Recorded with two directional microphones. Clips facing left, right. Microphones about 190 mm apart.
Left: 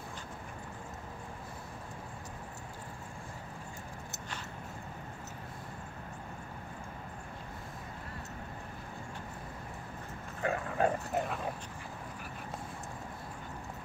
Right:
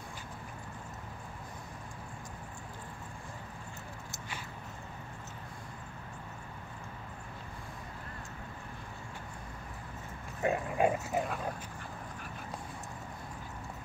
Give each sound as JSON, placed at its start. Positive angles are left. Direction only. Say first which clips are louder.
{"t": 10.4, "sound": "dog", "louder": "right 2 dB", "side_deg": -15}
{"t": 11.1, "sound": "dog", "louder": "even", "side_deg": 0}